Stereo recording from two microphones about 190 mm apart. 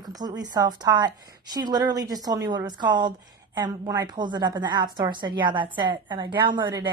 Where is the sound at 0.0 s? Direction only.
20° right (ahead or behind).